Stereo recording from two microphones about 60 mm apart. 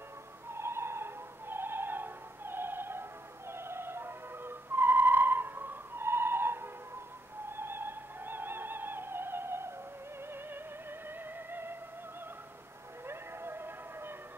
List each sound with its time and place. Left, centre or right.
0.5 s opera: right
7.5 s music: right
13.0 s a sound: right